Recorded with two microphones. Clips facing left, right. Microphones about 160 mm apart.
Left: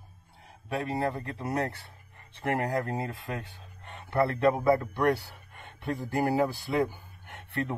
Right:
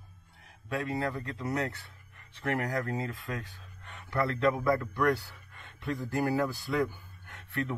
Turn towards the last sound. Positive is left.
turn(degrees=25)  # may be behind; listen again after turning